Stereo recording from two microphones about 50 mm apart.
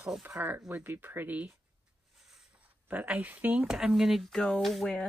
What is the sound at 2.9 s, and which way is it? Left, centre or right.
Speech, right.